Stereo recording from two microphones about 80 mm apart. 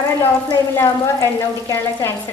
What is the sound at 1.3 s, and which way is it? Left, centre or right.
Speech, left.